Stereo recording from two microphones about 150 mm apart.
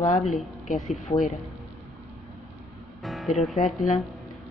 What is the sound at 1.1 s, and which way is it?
Speech, 25° left (ahead or behind).